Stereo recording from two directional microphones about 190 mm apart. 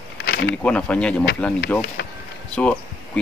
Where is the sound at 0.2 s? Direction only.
60° left (ahead or behind).